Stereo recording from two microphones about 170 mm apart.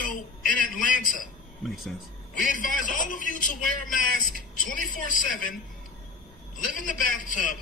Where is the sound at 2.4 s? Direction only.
50° left (ahead or behind).